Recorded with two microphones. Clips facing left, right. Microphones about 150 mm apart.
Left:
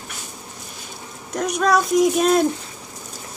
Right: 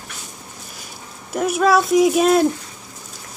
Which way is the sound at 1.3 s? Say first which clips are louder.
Right 3 dB; 5° right (ahead or behind).